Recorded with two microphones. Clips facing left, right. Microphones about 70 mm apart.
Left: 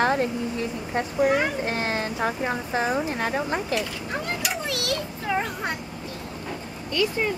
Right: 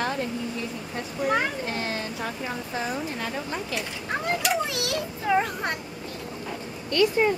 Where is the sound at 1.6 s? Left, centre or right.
Left.